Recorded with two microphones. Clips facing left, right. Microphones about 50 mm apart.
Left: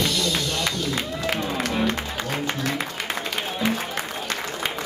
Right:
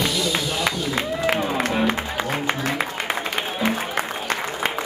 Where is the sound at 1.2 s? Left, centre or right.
Right.